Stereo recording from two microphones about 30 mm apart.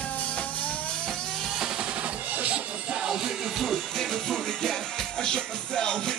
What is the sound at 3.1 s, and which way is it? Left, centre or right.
Music, centre.